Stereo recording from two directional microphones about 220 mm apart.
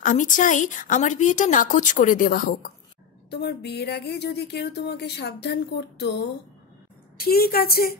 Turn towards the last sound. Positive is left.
turn(degrees=45)  # may be behind; listen again after turning